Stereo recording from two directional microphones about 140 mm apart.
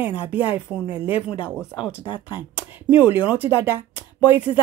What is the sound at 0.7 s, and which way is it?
Speech, 10° right (ahead or behind).